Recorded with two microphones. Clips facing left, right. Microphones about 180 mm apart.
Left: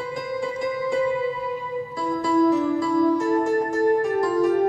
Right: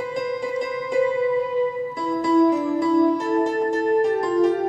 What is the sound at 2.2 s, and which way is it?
Music, 20° right (ahead or behind).